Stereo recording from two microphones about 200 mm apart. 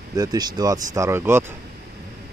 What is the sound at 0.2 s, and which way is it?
Speech, 20° right (ahead or behind).